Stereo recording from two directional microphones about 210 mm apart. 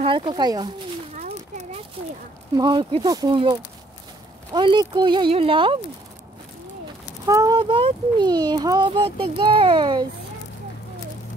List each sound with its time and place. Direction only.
0.0 s speech: 25° right (ahead or behind)
1.1 s a sound: 35° right (ahead or behind)
2.5 s speech: 20° right (ahead or behind)
7.2 s speech: 15° right (ahead or behind)